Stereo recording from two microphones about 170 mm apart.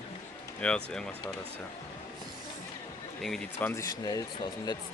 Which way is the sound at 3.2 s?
Centre (ahead or behind).